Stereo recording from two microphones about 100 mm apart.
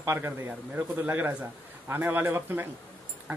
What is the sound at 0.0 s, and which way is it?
Speech, 25° right (ahead or behind).